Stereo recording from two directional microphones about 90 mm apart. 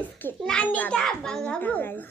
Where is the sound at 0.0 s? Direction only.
20° left (ahead or behind).